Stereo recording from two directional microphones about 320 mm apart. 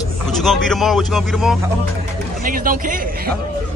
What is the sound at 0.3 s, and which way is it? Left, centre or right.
Speech, centre.